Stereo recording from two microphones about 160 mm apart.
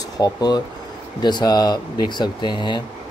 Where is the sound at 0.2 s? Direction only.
25° left (ahead or behind).